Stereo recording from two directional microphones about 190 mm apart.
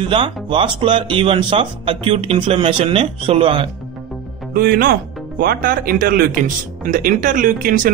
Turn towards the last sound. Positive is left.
turn(degrees=-45)  # may be behind; listen again after turning